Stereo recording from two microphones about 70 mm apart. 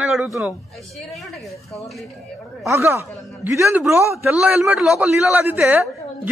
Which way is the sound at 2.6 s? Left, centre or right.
Right.